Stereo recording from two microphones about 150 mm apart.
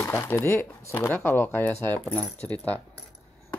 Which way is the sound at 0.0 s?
15° left (ahead or behind).